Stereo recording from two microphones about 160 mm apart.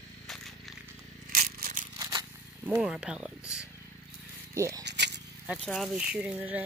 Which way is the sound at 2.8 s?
5° right (ahead or behind).